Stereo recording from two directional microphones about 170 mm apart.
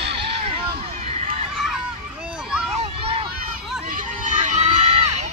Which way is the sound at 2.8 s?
35° right (ahead or behind).